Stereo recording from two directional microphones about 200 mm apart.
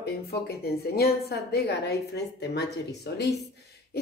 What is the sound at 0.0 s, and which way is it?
A woman's voice, 55° left (ahead or behind).